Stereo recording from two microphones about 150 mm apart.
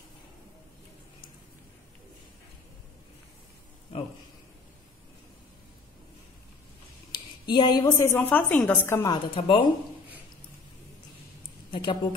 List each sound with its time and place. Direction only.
7.1 s a woman's voice: 30° left (ahead or behind)
9.1 s speech: 35° left (ahead or behind)
11.7 s a woman's voice: 30° left (ahead or behind)